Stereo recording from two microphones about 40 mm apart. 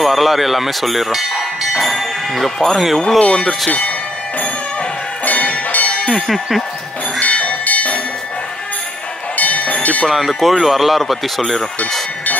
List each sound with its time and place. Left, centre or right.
0.0 s speech: centre
3.2 s speech: centre
5.2 s music: left
5.7 s a sound: left
6.1 s speech: centre
7.2 s bell: left
9.4 s a sound: left
10.0 s speech: centre